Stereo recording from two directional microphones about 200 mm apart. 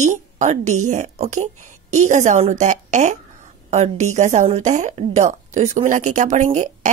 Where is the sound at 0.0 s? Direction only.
35° right (ahead or behind).